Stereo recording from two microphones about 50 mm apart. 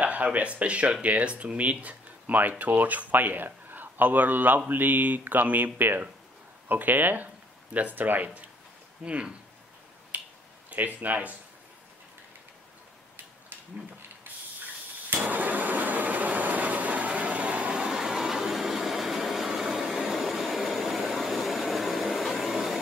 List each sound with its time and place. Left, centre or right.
0.0 s speech: right
9.0 s speech: right
10.1 s finger snapping: right
10.7 s speech: right
15.0 s vehicle: right; by 22.8 s centre